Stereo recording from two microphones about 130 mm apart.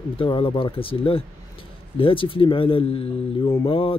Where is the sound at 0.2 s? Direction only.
40° left (ahead or behind).